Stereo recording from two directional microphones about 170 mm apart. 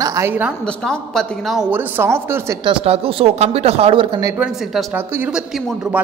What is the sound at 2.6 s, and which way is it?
Speech, 30° right (ahead or behind).